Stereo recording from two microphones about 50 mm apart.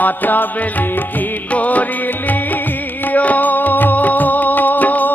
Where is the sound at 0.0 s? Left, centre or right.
Left.